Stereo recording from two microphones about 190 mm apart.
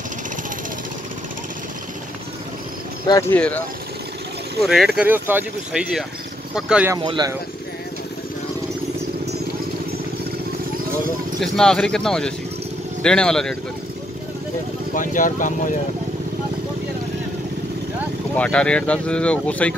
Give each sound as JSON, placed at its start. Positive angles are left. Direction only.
{"t": 3.1, "sound": "speech", "side_deg": 15}
{"t": 4.6, "sound": "speech", "side_deg": 0}
{"t": 7.0, "sound": "speech", "side_deg": -25}
{"t": 11.3, "sound": "speech", "side_deg": 0}
{"t": 15.0, "sound": "speech", "side_deg": 45}
{"t": 18.3, "sound": "speech", "side_deg": 5}